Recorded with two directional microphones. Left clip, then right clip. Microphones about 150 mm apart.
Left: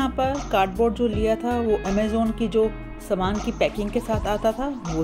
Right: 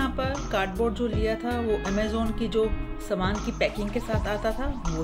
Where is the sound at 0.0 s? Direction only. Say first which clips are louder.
Left 5 dB; 30° left (ahead or behind).